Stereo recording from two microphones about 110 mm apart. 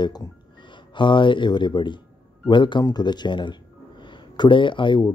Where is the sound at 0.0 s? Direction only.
40° left (ahead or behind).